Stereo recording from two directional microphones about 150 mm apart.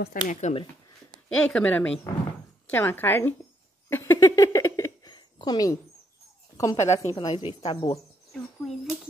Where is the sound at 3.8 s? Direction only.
15° left (ahead or behind).